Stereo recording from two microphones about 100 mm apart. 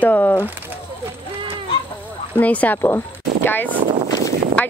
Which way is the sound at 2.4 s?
15° left (ahead or behind).